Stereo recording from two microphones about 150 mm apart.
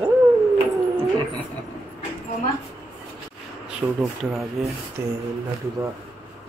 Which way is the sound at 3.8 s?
25° right (ahead or behind).